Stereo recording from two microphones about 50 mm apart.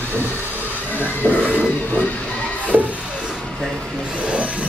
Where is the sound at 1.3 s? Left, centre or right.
Left.